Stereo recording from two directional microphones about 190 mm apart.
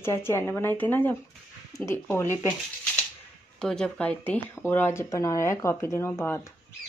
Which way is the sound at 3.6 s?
5° left (ahead or behind).